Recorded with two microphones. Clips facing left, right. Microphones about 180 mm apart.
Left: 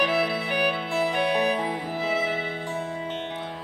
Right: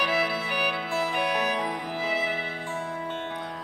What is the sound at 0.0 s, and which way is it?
Music, 25° left (ahead or behind).